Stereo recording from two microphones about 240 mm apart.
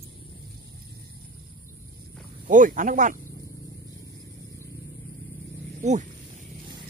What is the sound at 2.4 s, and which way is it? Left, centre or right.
Speech, right.